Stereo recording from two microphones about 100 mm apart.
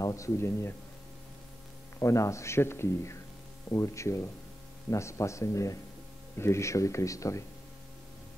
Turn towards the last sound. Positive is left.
turn(degrees=30)  # may be behind; listen again after turning